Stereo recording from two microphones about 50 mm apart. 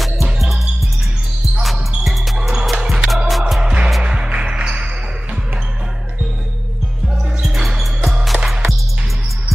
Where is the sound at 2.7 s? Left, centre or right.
Centre.